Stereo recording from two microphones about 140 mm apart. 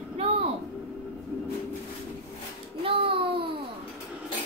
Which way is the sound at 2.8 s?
40° right (ahead or behind).